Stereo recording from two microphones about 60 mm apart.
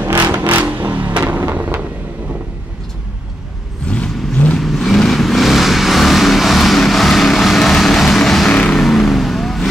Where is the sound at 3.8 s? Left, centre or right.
Centre.